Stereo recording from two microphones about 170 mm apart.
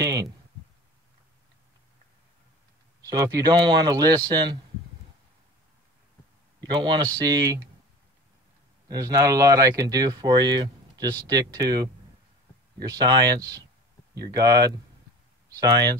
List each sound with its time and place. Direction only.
0.0 s a sound: 20° right (ahead or behind)
3.1 s speech: 20° right (ahead or behind)
6.8 s speech: 25° right (ahead or behind)
8.8 s speech: 20° right (ahead or behind)